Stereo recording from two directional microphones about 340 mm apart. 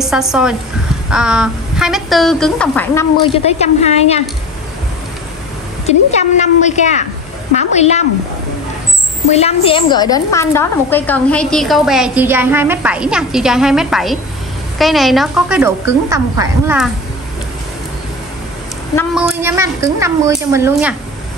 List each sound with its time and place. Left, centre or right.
0.0 s a woman's voice: centre
3.5 s a woman's voice: centre
5.9 s a woman's voice: centre
9.3 s a woman's voice: centre
18.9 s a woman's voice: centre